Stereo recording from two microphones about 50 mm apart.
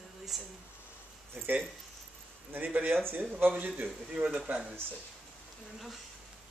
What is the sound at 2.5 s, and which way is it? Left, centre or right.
Speech, right.